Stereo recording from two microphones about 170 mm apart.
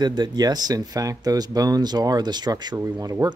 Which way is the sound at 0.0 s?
25° right (ahead or behind).